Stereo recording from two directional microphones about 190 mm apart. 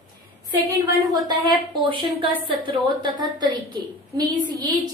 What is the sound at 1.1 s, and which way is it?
A woman's voice, 20° right (ahead or behind).